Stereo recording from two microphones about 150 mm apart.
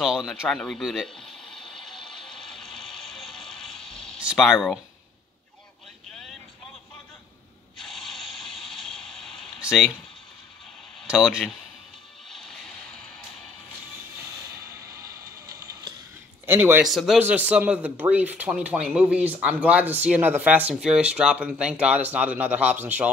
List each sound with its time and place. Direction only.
0.0 s a sound: centre (ahead or behind)
4.2 s speech: 5° right (ahead or behind)
7.7 s hiss: centre (ahead or behind)
11.0 s speech: 5° right (ahead or behind)
12.3 s music: 5° left (ahead or behind)
15.0 s music: 20° right (ahead or behind)
16.4 s speech: 15° right (ahead or behind)
16.8 s speech: centre (ahead or behind)